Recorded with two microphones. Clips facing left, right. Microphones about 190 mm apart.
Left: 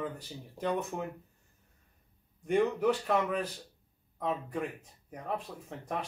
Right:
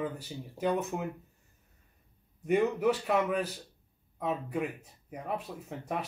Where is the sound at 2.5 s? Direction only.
5° right (ahead or behind).